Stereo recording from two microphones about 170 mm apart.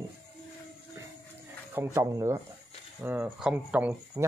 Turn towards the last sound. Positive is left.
turn(degrees=-10)  # may be behind; listen again after turning